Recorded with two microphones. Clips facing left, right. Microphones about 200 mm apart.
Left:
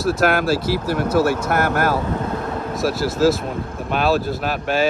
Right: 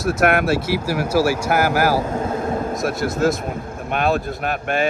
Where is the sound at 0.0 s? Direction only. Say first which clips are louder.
Even; centre (ahead or behind).